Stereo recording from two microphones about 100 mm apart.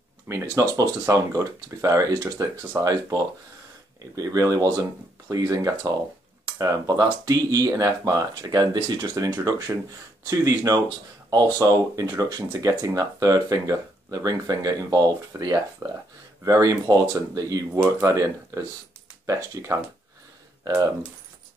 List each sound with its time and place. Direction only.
0.3 s speech: 30° right (ahead or behind)